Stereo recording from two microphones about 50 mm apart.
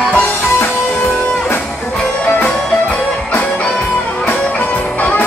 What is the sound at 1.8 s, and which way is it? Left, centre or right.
Music, centre.